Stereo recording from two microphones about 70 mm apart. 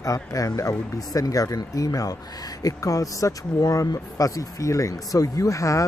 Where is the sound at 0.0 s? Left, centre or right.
Left.